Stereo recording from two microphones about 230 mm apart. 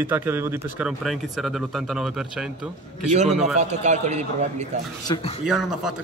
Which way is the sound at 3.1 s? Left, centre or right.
Right.